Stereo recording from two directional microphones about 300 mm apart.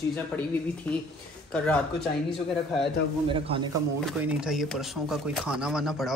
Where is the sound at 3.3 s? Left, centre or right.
Centre.